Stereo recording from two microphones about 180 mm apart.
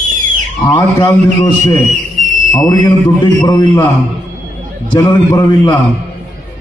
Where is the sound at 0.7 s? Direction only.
25° left (ahead or behind).